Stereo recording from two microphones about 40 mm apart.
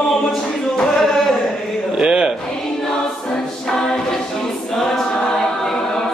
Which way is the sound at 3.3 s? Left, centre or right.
Centre.